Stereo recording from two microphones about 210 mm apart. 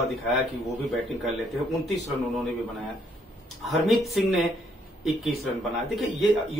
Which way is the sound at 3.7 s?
Centre (ahead or behind).